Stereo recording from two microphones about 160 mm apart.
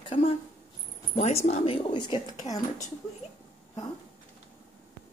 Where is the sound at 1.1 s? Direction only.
45° left (ahead or behind); by 2.6 s 25° left (ahead or behind).